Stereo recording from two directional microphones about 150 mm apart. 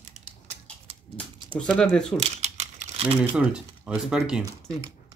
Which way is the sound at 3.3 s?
5° right (ahead or behind).